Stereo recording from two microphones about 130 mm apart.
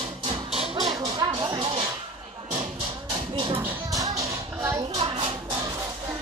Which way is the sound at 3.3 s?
40° right (ahead or behind).